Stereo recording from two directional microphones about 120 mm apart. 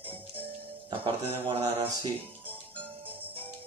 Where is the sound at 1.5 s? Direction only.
50° right (ahead or behind).